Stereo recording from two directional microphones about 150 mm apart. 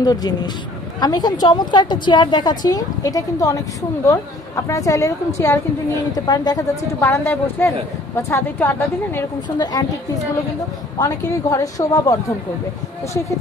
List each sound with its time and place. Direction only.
0.0 s a woman's voice: 25° left (ahead or behind)
9.6 s a woman's voice: 25° left (ahead or behind)
11.0 s a woman's voice: 25° left (ahead or behind)